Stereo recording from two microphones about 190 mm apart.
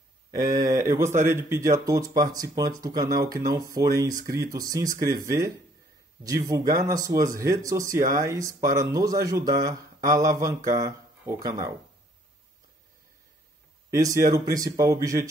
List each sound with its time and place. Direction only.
0.7 s speech: 15° right (ahead or behind)
13.8 s speech: 15° right (ahead or behind)